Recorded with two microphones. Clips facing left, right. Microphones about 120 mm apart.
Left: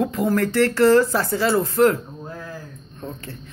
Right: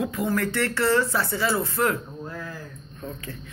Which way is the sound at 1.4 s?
50° left (ahead or behind).